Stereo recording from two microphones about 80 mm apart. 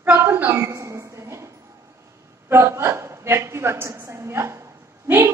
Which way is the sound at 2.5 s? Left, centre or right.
Right.